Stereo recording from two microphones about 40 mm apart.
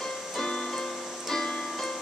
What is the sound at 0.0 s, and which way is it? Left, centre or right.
Music, centre.